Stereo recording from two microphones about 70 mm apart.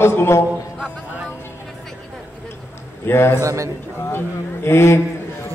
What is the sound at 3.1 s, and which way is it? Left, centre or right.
Speech, left.